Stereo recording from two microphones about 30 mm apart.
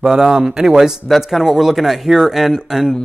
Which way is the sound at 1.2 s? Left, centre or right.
Centre.